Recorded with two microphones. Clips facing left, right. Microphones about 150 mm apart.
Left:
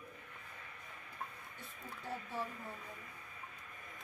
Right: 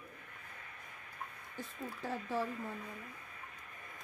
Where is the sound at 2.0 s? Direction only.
90° right.